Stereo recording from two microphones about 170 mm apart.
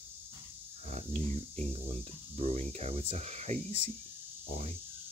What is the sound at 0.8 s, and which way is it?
Speech, 45° right (ahead or behind).